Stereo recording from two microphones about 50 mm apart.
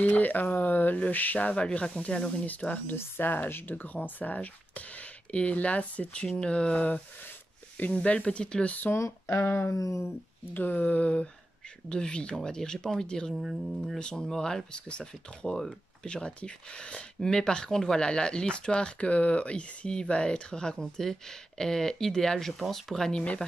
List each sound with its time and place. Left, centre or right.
0.0 s speech: left
2.9 s speech: left
9.3 s a sound: left
9.8 s speech: left
10.5 s speech: left
10.9 s speech: left
13.3 s speech: centre